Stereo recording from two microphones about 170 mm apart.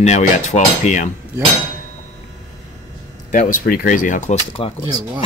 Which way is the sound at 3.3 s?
50° left (ahead or behind).